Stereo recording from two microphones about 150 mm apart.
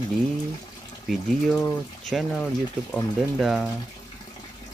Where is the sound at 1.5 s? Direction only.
10° left (ahead or behind).